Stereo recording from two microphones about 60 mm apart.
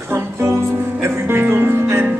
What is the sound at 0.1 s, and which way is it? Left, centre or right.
Music, right.